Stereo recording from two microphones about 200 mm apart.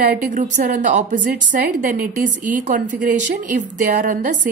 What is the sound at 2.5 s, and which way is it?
A woman's voice, 40° right (ahead or behind).